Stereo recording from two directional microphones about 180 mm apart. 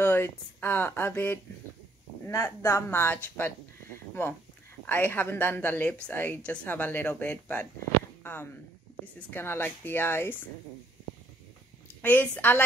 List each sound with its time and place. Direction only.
0.0 s speech: 10° left (ahead or behind)
8.2 s a sound: 10° left (ahead or behind)
9.3 s speech: 10° left (ahead or behind)
12.0 s speech: 10° left (ahead or behind)